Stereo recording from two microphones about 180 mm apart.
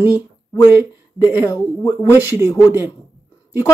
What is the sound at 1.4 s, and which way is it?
Speech, 15° left (ahead or behind).